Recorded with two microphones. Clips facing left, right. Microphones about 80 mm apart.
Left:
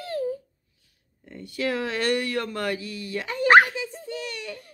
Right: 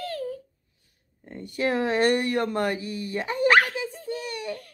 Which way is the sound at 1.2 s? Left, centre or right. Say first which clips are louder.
Right 2 dB; right.